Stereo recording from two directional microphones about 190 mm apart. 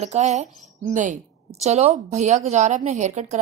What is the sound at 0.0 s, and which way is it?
A woman's voice, 35° right (ahead or behind).